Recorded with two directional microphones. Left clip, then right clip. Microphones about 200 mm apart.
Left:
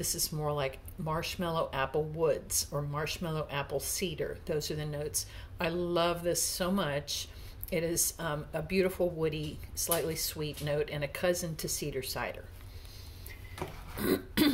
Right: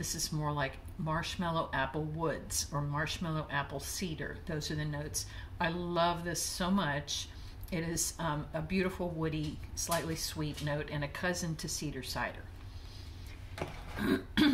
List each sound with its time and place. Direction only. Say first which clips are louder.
0.0 s speech: left 2 dB; 25° left (ahead or behind)